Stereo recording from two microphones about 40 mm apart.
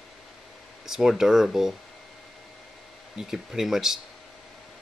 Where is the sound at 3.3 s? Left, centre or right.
Centre.